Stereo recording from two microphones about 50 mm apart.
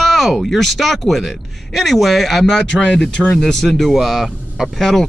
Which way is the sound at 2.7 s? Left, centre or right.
Left.